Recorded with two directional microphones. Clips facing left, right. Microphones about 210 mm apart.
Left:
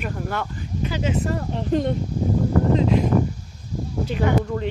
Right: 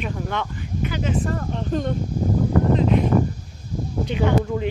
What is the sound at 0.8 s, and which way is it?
Speech, 30° left (ahead or behind).